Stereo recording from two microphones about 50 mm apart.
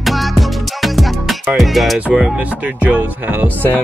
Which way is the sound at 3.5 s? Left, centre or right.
Left.